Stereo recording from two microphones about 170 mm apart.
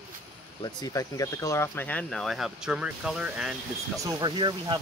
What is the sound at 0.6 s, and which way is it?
Speech, 20° left (ahead or behind).